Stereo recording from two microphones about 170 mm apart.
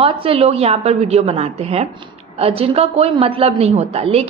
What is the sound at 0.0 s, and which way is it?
A man's voice, 35° right (ahead or behind).